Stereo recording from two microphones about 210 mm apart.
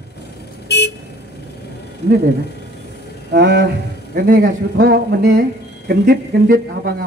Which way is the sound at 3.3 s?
55° right (ahead or behind).